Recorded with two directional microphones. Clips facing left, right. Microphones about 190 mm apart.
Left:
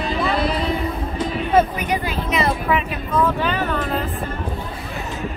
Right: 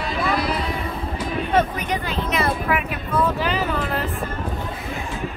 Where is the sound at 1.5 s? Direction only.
10° left (ahead or behind).